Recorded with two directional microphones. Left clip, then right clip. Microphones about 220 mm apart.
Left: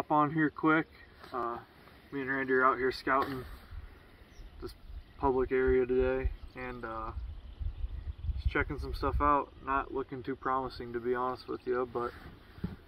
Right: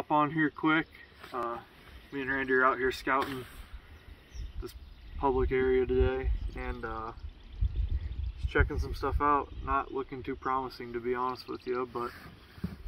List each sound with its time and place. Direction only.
0.0 s speech: 5° right (ahead or behind)
4.6 s speech: 5° right (ahead or behind)
5.2 s speech: 5° left (ahead or behind)
6.5 s speech: 35° left (ahead or behind)
8.4 s speech: 40° left (ahead or behind)
9.7 s speech: 15° left (ahead or behind)
10.0 s speech: centre (ahead or behind)
10.7 s speech: 15° right (ahead or behind)